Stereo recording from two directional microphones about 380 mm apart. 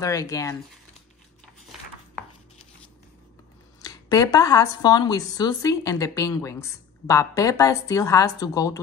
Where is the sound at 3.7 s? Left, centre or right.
Centre.